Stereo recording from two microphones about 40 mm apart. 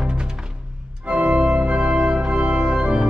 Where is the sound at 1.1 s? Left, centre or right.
Right.